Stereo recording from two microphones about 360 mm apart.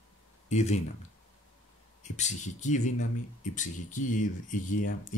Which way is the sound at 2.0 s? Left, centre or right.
Centre.